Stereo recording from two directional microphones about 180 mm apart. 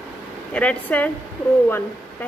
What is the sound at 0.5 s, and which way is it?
Speech, 5° left (ahead or behind).